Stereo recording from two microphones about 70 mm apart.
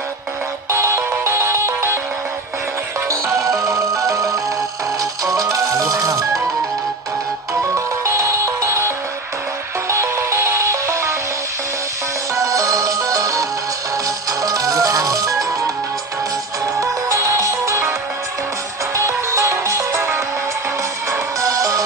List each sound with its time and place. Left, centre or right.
0.7 s music: right
3.1 s music: right
7.7 s music: right
12.4 s music: right
16.7 s music: right
18.9 s music: right
21.1 s music: right